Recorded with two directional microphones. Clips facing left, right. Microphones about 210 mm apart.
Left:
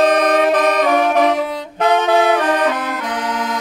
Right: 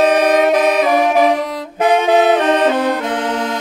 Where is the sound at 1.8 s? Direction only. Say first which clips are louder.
Right 2 dB; 15° right (ahead or behind).